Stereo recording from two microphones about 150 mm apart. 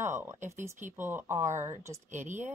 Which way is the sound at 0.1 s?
15° right (ahead or behind).